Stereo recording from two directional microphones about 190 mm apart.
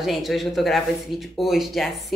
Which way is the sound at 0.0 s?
Centre (ahead or behind).